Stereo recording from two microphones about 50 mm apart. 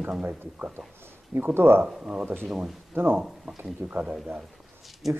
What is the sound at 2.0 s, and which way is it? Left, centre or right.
Speech, centre.